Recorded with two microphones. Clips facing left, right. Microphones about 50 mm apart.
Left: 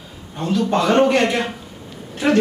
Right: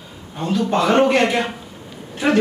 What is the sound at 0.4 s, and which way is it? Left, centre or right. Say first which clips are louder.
Speech: even; centre.